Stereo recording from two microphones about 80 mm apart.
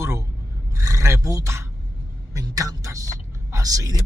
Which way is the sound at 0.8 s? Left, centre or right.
Right.